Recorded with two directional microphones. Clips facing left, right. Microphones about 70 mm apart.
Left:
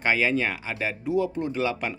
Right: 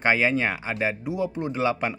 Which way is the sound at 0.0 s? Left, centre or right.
Right.